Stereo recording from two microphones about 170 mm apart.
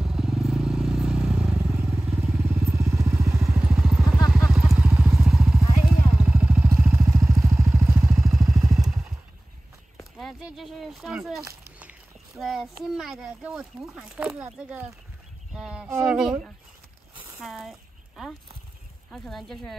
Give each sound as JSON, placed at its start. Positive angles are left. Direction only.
{"t": 0.0, "sound": "vehicle", "side_deg": -5}
{"t": 1.8, "sound": "vehicle", "side_deg": -15}
{"t": 3.3, "sound": "vehicle", "side_deg": -5}
{"t": 7.8, "sound": "vehicle", "side_deg": -5}
{"t": 8.7, "sound": "motorcycle", "side_deg": 0}
{"t": 10.1, "sound": "a sound", "side_deg": 0}
{"t": 11.4, "sound": "a child's voice", "side_deg": -10}
{"t": 17.4, "sound": "a sound", "side_deg": 0}
{"t": 19.1, "sound": "speech", "side_deg": 0}